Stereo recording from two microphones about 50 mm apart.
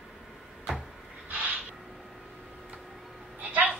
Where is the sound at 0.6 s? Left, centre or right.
Centre.